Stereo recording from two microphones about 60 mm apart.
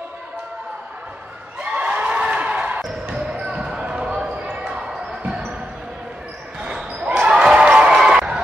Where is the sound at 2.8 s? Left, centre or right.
Centre.